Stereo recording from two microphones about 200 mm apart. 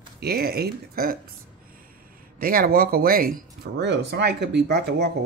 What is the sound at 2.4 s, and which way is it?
Speech, 45° right (ahead or behind).